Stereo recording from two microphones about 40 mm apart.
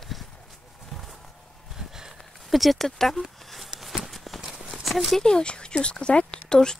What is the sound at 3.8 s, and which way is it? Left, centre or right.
Clip-clop, centre.